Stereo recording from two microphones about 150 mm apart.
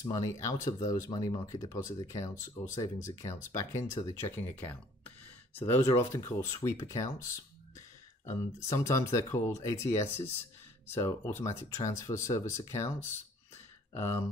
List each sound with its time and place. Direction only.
0.0 s speech: 20° left (ahead or behind)
8.3 s speech: 20° left (ahead or behind)